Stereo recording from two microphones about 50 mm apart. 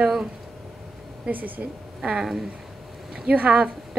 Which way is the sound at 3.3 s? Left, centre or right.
Centre.